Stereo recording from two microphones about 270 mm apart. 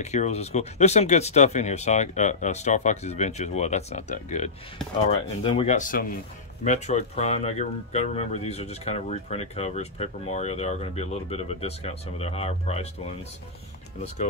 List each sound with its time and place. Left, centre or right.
0.0 s speech: left